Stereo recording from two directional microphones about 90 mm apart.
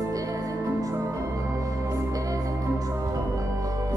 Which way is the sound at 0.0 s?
40° right (ahead or behind).